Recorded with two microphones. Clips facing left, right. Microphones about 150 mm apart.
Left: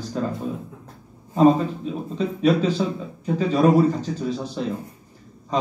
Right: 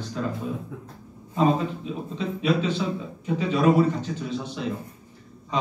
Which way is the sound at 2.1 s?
40° left (ahead or behind).